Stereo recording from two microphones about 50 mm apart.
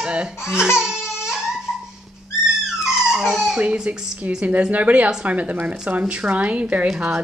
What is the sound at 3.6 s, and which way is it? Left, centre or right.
A woman's voice, right.